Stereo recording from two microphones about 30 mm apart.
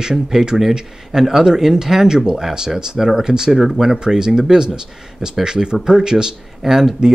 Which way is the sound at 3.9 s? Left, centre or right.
Right.